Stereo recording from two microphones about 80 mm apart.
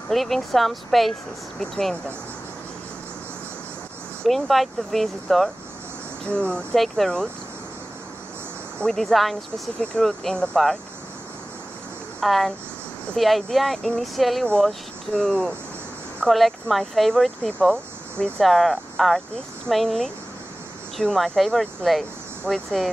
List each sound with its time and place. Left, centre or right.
0.1 s speech: centre
4.2 s speech: centre
6.2 s speech: centre
8.7 s speech: centre
12.2 s speech: centre